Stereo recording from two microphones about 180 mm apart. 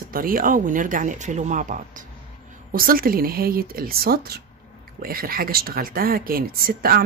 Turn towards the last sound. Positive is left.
turn(degrees=-55)  # may be behind; listen again after turning